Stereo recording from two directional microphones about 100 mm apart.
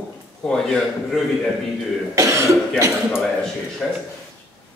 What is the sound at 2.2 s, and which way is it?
Speech, 30° right (ahead or behind).